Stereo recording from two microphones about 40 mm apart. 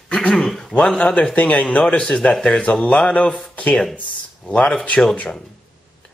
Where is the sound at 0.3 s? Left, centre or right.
Centre.